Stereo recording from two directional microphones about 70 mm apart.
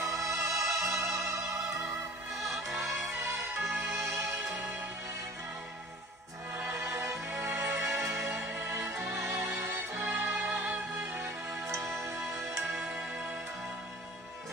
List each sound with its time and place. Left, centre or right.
0.0 s music: right
2.7 s music: centre
3.2 s music: right
6.7 s music: right
10.3 s music: right
11.0 s music: right
13.0 s music: centre